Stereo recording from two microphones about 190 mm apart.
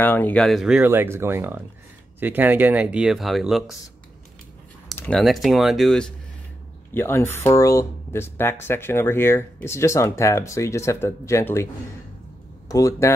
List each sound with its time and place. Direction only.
0.0 s speech: 10° left (ahead or behind)
4.9 s speech: 5° left (ahead or behind)
6.9 s speech: 10° left (ahead or behind)